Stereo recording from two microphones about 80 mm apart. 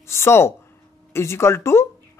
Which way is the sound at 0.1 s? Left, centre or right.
Left.